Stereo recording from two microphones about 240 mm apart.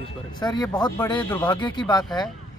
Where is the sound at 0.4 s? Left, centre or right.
Centre.